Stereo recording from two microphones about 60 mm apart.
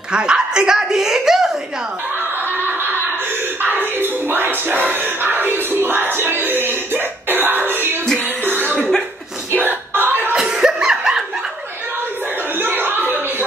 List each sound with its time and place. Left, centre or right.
0.1 s a woman's voice: centre
2.1 s snicker: right
3.6 s music: right
8.7 s chuckle: centre
9.5 s music: right
10.5 s laughter: centre
12.5 s chuckle: right